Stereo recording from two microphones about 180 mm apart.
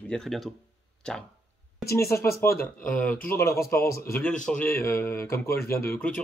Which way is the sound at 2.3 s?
15° left (ahead or behind).